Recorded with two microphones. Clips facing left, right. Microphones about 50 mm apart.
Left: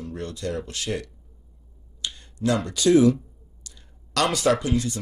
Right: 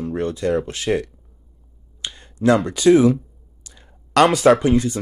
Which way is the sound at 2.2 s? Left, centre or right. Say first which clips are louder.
Right 8 dB; right.